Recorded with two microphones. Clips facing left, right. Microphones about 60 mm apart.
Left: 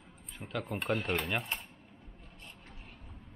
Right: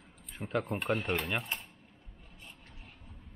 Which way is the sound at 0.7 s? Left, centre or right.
Centre.